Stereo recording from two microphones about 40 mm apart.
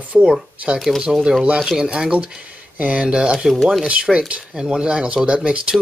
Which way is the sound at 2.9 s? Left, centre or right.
Right.